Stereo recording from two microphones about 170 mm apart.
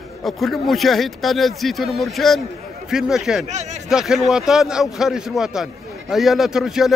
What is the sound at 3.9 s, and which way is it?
A man's voice, 5° right (ahead or behind).